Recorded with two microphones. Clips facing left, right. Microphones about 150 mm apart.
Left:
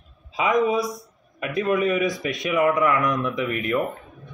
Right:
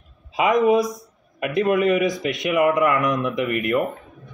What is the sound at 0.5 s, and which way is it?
Speech, 65° right (ahead or behind).